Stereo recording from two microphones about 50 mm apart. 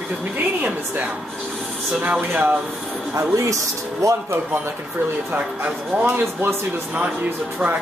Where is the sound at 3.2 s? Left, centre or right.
Right.